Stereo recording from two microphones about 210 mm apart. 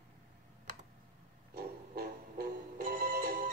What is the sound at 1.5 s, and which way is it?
Music, 45° right (ahead or behind).